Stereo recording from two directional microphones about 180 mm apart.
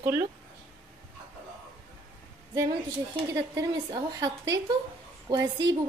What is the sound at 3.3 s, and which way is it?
A woman's voice, 20° right (ahead or behind).